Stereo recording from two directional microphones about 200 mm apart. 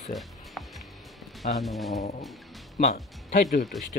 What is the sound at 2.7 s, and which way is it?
Speech, 40° left (ahead or behind).